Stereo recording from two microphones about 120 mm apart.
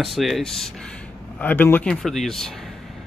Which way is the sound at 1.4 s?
15° left (ahead or behind).